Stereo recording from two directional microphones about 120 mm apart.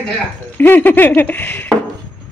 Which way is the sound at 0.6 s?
15° left (ahead or behind).